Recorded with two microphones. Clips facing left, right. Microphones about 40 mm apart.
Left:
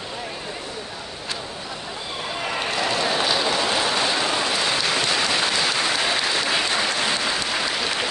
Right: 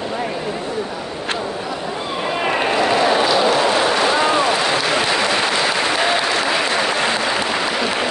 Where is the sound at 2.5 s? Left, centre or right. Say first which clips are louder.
Right 7 dB; right.